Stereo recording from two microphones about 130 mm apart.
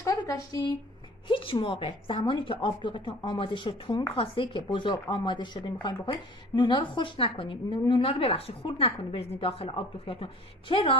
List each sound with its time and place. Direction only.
0.0 s speech: 25° left (ahead or behind)
1.2 s a woman's voice: 40° left (ahead or behind)